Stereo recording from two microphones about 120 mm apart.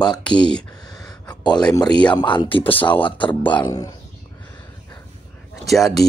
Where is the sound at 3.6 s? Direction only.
30° left (ahead or behind).